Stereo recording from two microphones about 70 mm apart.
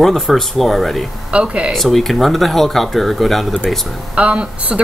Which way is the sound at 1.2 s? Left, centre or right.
Centre.